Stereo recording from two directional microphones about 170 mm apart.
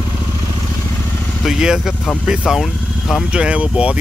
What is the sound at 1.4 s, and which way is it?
Speech, 5° right (ahead or behind).